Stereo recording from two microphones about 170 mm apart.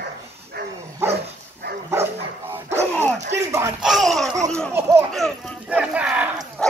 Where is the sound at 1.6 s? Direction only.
75° right (ahead or behind).